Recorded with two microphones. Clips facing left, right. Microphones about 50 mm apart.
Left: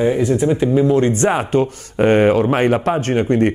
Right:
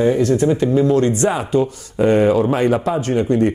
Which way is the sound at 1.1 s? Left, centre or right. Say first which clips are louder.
Left 1 dB; left.